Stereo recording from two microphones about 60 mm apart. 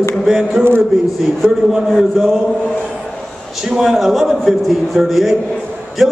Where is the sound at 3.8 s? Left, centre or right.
Centre.